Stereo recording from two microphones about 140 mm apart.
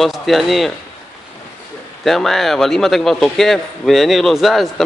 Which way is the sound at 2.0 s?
Centre (ahead or behind).